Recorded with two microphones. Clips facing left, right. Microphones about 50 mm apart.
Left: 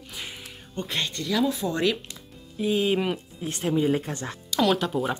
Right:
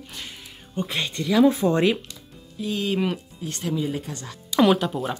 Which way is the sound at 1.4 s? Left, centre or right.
Right.